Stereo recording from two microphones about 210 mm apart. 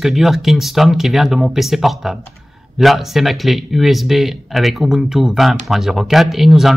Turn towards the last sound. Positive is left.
turn(degrees=0)  # may be behind; listen again after turning